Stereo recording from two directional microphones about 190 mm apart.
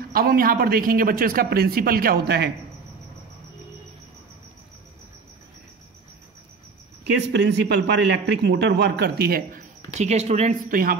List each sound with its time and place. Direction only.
0.1 s speech: 50° right (ahead or behind)
7.2 s a man's voice: 65° right (ahead or behind)
9.9 s speech: 35° right (ahead or behind)